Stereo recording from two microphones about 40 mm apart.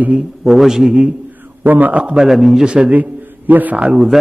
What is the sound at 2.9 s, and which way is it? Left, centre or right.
Speech, right.